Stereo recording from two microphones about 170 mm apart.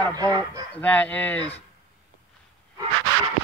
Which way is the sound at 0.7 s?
10° left (ahead or behind).